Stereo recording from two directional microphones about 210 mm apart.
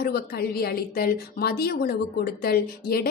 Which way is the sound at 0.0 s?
50° left (ahead or behind).